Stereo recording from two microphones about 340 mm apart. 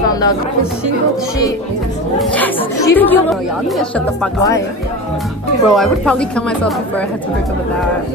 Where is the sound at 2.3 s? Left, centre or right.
Centre.